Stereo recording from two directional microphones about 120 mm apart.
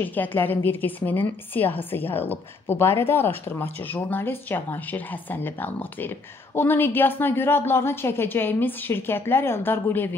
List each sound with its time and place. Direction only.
0.0 s a woman's voice: 15° left (ahead or behind)